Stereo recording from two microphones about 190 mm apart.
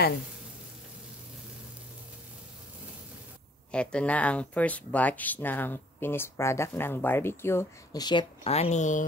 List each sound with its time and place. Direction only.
3.7 s speech: 5° left (ahead or behind); by 9.0 s 40° left (ahead or behind)